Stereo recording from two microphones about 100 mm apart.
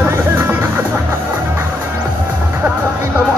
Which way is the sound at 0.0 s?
20° right (ahead or behind).